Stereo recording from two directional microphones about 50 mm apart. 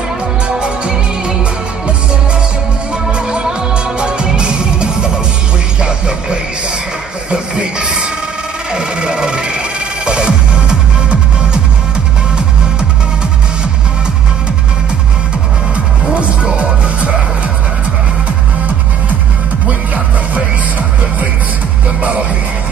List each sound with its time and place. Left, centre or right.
0.6 s music: centre
3.1 s music: centre
8.7 s a sound: centre
10.0 s music: centre
15.7 s music: right